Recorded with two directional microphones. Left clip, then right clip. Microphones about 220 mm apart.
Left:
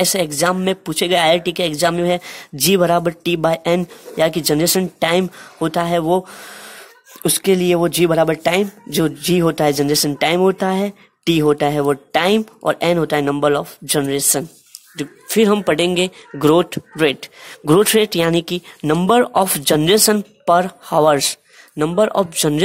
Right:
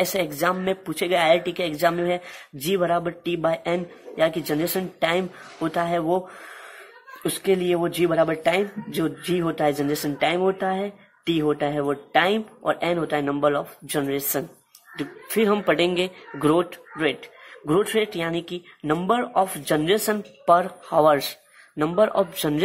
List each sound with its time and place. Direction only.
0.0 s speech: 45° left (ahead or behind)